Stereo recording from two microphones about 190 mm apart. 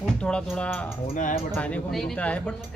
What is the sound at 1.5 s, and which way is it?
A man's voice, 5° left (ahead or behind).